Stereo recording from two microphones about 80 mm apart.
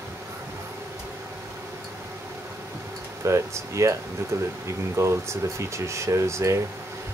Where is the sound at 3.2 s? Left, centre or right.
Right.